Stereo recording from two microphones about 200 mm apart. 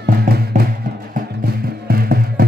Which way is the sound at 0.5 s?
40° right (ahead or behind).